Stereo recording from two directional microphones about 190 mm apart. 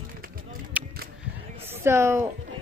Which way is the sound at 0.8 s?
10° right (ahead or behind).